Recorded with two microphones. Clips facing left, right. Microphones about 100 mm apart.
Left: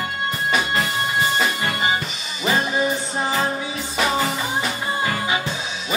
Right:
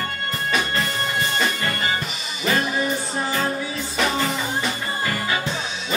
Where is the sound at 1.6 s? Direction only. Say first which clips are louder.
Left 2 dB; 20° left (ahead or behind).